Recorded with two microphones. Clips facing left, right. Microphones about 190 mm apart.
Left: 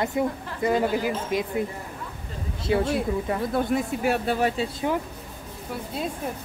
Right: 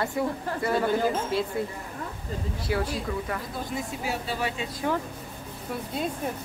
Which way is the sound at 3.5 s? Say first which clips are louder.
Left 8 dB; 60° left (ahead or behind).